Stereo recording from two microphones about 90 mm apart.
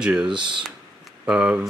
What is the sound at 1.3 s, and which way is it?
Speech, 10° right (ahead or behind).